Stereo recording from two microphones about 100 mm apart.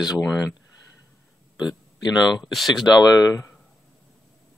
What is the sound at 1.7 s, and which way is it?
Speech, 5° right (ahead or behind).